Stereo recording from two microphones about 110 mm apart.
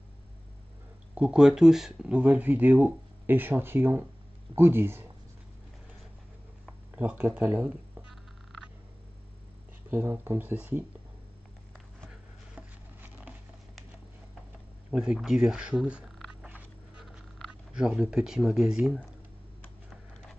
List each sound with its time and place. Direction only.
1.1 s speech: 5° right (ahead or behind)
7.0 s speech: 15° right (ahead or behind)
9.8 s speech: 20° right (ahead or behind)
12.1 s chopping: 15° right (ahead or behind)
14.9 s speech: 5° right (ahead or behind)
16.3 s a sound: 15° right (ahead or behind)
17.0 s speech: 5° right (ahead or behind)